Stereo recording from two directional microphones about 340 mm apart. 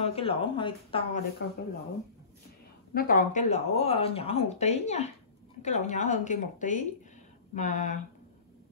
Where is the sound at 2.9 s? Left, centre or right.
Left.